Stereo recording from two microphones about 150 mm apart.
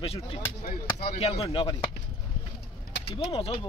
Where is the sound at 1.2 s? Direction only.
40° left (ahead or behind).